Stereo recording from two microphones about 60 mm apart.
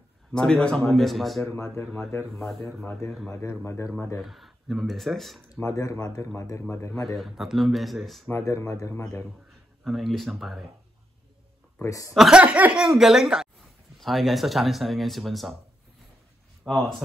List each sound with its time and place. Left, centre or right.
0.3 s a man's voice: centre
3.3 s speech: left
4.2 s speech: centre
5.6 s speech: left
7.2 s speech: centre
8.3 s speech: left
8.9 s speech: left
9.8 s speech: centre
11.8 s speech: left
12.3 s speech: centre
12.7 s speech: centre
16.6 s speech: centre